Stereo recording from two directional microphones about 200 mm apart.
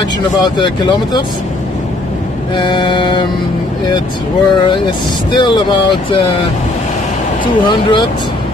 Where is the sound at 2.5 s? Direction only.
25° left (ahead or behind).